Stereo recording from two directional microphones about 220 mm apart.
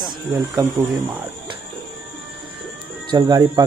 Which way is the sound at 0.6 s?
10° right (ahead or behind).